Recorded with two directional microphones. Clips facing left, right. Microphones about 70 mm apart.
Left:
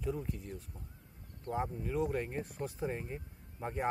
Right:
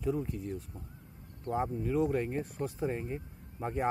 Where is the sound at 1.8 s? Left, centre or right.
Centre.